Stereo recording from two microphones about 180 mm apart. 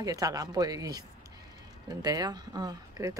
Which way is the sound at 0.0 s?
20° right (ahead or behind).